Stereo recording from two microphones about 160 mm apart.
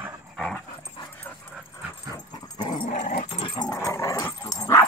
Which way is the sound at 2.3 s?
25° left (ahead or behind).